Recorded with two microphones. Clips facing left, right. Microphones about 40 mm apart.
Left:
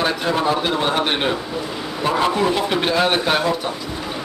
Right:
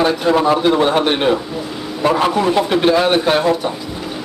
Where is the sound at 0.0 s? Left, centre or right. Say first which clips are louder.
Right 5 dB; centre.